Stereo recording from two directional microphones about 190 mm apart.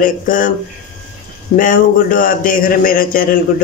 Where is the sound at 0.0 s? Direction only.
45° left (ahead or behind).